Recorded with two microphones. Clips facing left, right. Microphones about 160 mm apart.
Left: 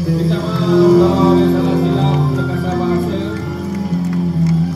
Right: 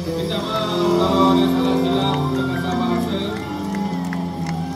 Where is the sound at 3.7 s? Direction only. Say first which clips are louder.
Left 7 dB; 70° right (ahead or behind).